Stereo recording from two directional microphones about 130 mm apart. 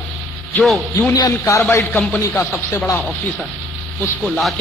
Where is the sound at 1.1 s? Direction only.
25° left (ahead or behind).